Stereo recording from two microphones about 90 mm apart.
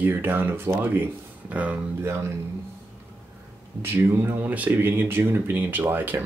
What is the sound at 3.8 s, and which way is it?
Speech, 25° right (ahead or behind).